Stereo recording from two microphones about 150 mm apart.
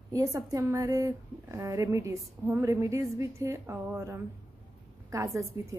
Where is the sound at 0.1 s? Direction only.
20° right (ahead or behind).